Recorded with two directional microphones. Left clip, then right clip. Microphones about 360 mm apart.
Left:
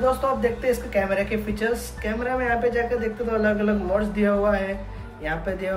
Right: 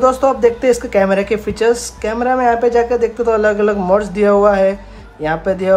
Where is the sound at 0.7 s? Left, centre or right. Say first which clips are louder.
Right 10 dB; centre.